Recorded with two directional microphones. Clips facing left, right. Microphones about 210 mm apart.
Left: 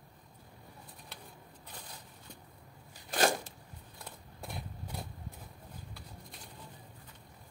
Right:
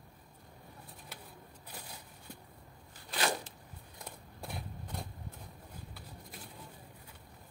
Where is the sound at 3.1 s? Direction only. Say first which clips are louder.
Left 5 dB; 45° left (ahead or behind).